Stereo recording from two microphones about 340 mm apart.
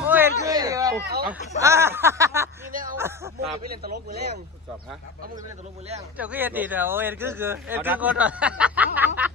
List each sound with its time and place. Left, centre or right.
0.0 s a sound: centre
0.9 s speech: right
1.6 s speech: centre
3.8 s a man's voice: right
6.1 s speech: centre